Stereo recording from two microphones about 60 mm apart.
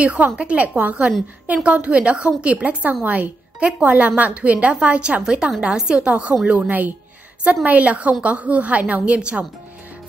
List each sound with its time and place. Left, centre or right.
0.0 s a woman's voice: right